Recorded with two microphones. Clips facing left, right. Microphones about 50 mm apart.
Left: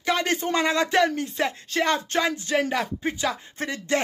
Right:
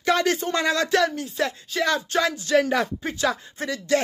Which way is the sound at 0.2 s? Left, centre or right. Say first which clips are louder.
Right 1 dB; left.